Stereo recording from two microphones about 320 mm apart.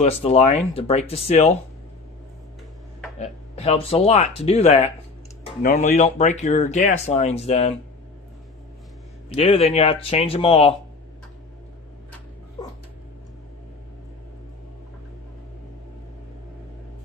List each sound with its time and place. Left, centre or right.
0.0 s speech: centre
3.2 s speech: centre
9.3 s speech: centre